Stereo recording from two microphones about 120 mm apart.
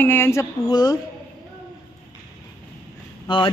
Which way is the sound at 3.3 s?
40° left (ahead or behind).